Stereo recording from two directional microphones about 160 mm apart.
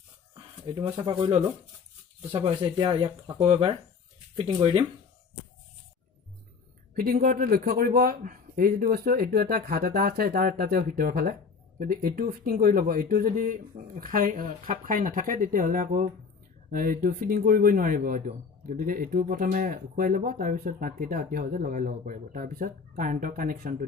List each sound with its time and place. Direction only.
0.9 s speech: 40° right (ahead or behind)
7.0 s speech: 60° right (ahead or behind)